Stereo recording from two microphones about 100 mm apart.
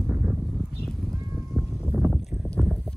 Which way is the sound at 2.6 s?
Centre (ahead or behind).